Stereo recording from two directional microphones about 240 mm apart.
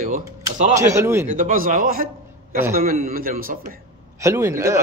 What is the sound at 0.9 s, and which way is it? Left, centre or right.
Speech, centre.